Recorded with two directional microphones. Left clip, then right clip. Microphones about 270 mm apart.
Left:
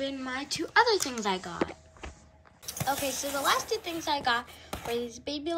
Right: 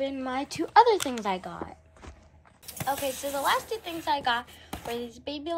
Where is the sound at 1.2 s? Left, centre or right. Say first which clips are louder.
Right 1 dB; centre.